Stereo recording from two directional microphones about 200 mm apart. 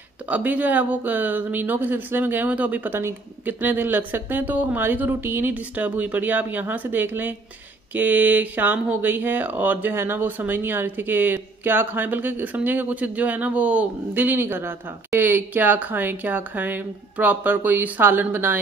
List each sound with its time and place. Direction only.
0.3 s speech: 10° right (ahead or behind)